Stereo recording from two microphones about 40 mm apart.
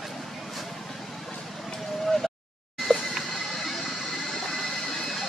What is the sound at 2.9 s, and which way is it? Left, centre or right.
Music, left.